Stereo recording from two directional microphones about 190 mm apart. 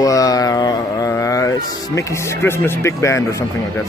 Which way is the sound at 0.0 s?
20° left (ahead or behind).